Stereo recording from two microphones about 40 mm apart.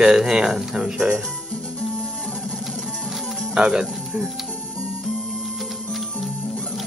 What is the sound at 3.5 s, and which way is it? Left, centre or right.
Speech, right.